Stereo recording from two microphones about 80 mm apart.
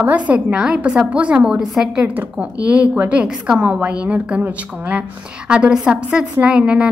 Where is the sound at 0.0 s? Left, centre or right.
Centre.